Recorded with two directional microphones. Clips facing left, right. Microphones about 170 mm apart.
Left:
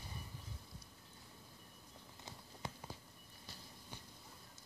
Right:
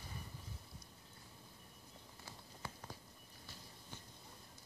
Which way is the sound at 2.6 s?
20° left (ahead or behind).